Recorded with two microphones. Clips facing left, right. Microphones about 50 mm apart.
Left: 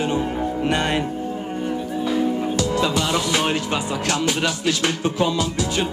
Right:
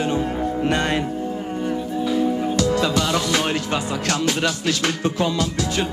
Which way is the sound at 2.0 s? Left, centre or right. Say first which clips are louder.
Right 1 dB; centre.